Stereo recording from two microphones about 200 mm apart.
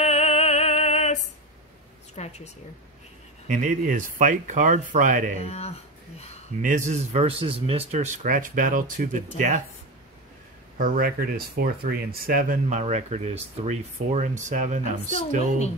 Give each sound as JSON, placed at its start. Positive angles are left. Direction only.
{"t": 0.0, "sound": "music", "side_deg": 35}
{"t": 2.1, "sound": "a sound", "side_deg": 35}
{"t": 3.4, "sound": "speech", "side_deg": -40}
{"t": 5.4, "sound": "speech", "side_deg": 30}
{"t": 6.6, "sound": "speech", "side_deg": -40}
{"t": 10.8, "sound": "speech", "side_deg": -45}